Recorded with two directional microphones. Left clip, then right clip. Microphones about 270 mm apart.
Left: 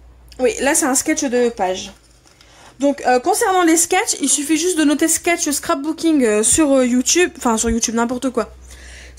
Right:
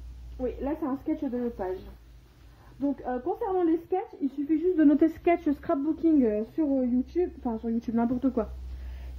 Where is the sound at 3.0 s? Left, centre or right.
Left.